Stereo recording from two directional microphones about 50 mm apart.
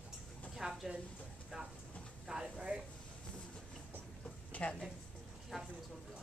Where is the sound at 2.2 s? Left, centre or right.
Centre.